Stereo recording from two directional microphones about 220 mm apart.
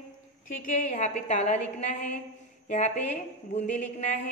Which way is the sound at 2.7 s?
35° left (ahead or behind).